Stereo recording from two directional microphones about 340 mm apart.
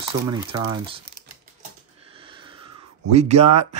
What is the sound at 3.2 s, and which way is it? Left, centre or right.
Speech, centre.